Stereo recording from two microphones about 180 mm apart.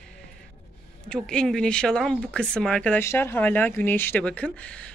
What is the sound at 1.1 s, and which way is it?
Speech, 5° left (ahead or behind).